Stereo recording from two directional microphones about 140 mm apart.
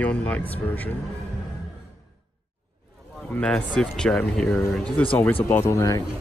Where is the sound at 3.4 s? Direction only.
5° left (ahead or behind).